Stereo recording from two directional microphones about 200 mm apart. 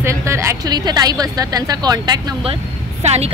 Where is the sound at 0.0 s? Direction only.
15° right (ahead or behind).